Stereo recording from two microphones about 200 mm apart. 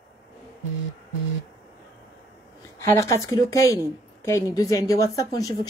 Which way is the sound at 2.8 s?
15° left (ahead or behind).